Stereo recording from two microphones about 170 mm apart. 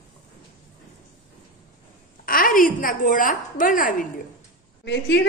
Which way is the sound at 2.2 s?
55° left (ahead or behind).